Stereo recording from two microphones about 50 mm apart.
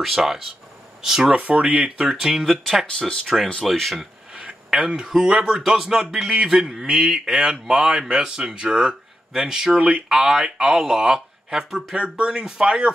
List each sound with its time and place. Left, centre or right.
0.0 s speech: centre
1.2 s speech: right
2.4 s speech: centre
3.0 s speech: centre
3.6 s speech: centre
4.4 s speech: right
11.9 s speech: right